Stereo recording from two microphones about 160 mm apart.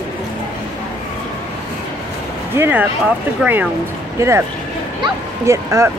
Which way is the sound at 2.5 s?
10° right (ahead or behind).